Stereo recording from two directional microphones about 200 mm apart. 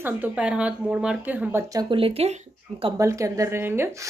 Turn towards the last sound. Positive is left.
turn(degrees=-15)  # may be behind; listen again after turning